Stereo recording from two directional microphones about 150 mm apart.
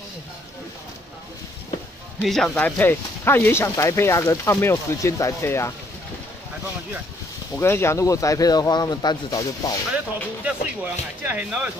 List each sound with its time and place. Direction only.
2.2 s speech: 5° left (ahead or behind)
7.5 s speech: 15° left (ahead or behind)
9.9 s speech: 10° right (ahead or behind)